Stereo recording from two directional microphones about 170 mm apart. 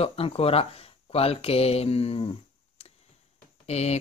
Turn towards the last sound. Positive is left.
turn(degrees=40)  # may be behind; listen again after turning